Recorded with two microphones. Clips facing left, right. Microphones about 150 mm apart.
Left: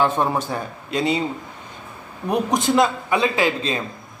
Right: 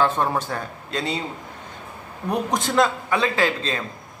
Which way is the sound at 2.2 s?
15° left (ahead or behind).